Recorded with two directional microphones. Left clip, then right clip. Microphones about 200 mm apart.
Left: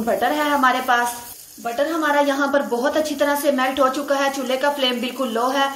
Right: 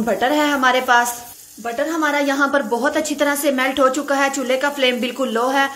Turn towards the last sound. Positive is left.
turn(degrees=-25)  # may be behind; listen again after turning